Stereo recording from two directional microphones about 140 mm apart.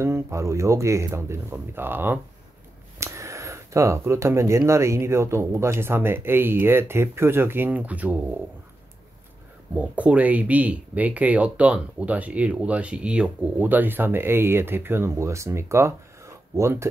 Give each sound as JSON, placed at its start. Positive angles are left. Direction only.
{"t": 0.0, "sound": "speech", "side_deg": -20}
{"t": 9.8, "sound": "speech", "side_deg": -10}